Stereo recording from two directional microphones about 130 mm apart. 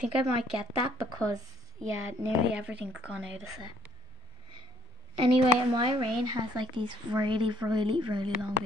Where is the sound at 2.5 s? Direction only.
10° right (ahead or behind).